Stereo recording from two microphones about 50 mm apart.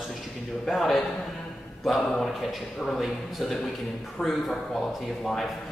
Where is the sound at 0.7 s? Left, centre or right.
Centre.